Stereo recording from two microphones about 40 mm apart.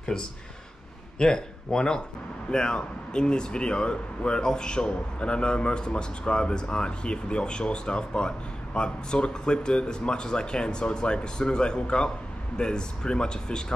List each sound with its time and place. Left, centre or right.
1.1 s speech: centre